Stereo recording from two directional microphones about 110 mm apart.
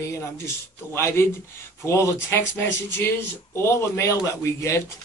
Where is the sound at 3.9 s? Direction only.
20° left (ahead or behind).